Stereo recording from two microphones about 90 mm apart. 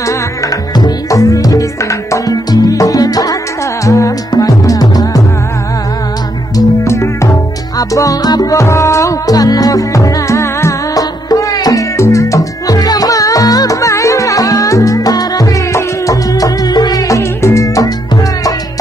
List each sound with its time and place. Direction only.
0.7 s music: 45° left (ahead or behind)
6.5 s music: 35° left (ahead or behind)
17.2 s music: 30° left (ahead or behind)